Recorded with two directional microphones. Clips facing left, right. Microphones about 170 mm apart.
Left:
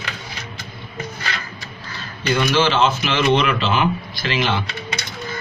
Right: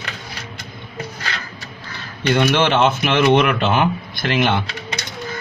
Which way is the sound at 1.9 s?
60° right (ahead or behind).